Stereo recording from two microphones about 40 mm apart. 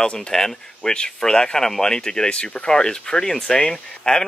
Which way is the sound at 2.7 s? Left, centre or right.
Centre.